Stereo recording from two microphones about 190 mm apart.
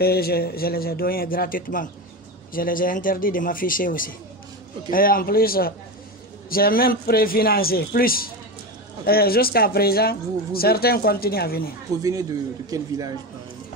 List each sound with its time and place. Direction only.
0.0 s speech: 55° left (ahead or behind)
12.0 s a man's voice: 20° right (ahead or behind)